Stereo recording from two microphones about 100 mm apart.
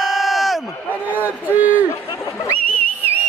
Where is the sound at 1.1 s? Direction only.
20° right (ahead or behind).